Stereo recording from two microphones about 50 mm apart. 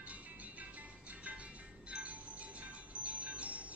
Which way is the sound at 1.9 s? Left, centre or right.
Right.